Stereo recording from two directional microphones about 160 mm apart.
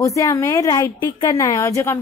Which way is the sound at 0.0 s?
20° left (ahead or behind).